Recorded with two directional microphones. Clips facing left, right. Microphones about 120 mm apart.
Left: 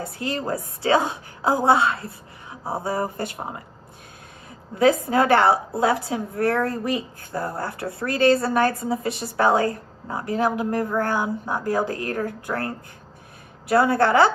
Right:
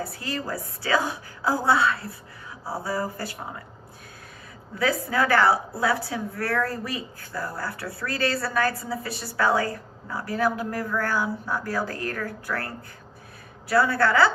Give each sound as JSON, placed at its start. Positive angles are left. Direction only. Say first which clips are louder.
{"t": 0.0, "sound": "a woman's voice", "louder": "left 4 dB", "side_deg": 25}
{"t": 4.7, "sound": "a woman's voice", "louder": "left 6 dB", "side_deg": 25}